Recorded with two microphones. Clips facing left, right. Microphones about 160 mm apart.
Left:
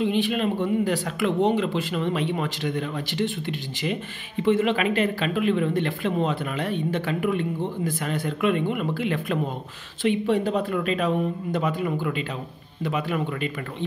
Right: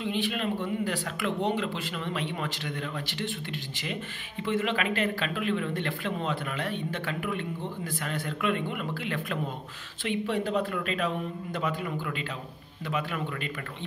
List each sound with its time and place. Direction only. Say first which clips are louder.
0.0 s speech: left 7 dB; 20° left (ahead or behind)